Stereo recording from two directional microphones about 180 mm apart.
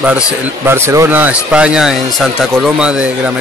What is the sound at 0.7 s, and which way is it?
Speech, 15° right (ahead or behind).